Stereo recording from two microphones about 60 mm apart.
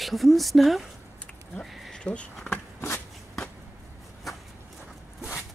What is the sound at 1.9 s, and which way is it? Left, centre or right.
Speech, centre.